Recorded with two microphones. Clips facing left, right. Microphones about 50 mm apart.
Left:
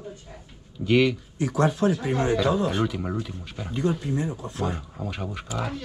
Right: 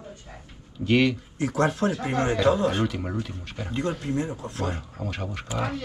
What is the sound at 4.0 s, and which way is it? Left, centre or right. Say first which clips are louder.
Speech: even; right.